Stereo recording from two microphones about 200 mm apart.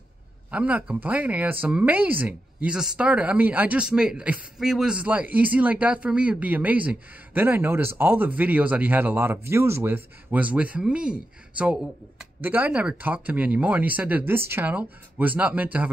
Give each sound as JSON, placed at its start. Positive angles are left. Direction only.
{"t": 0.5, "sound": "speech", "side_deg": -5}